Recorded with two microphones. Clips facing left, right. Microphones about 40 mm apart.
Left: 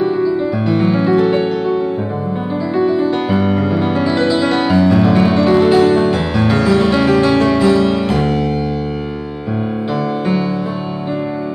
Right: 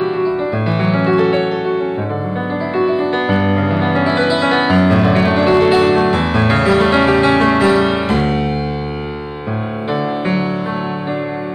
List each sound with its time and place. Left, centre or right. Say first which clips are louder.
0.0 s music: left 1 dB; right
2.8 s music: left 1 dB; right
3.3 s music: even; right
4.7 s music: left 1 dB; right
5.0 s music: left 1 dB; right